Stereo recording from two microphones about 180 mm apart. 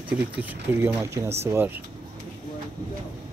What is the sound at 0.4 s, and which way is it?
Speech, 10° right (ahead or behind).